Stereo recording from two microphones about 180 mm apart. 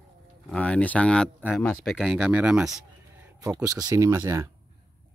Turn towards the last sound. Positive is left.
turn(degrees=-15)  # may be behind; listen again after turning